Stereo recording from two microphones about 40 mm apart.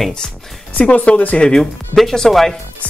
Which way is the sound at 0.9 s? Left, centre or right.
Left.